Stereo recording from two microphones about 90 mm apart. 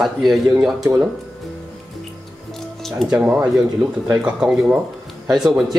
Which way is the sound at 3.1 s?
20° right (ahead or behind).